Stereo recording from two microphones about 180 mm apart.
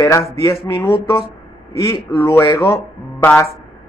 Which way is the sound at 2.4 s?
15° left (ahead or behind).